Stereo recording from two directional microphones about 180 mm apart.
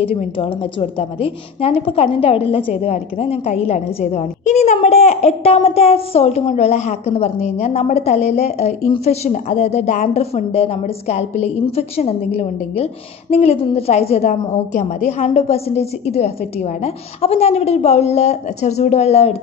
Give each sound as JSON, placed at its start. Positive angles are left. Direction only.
{"t": 0.0, "sound": "a woman's voice", "side_deg": 35}